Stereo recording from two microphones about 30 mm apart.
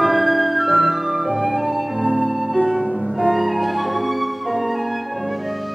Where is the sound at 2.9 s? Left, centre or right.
Centre.